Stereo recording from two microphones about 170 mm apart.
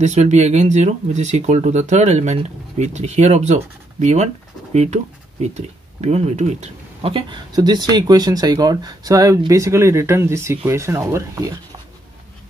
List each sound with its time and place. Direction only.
0.0 s speech: 45° right (ahead or behind); by 11.8 s 20° right (ahead or behind)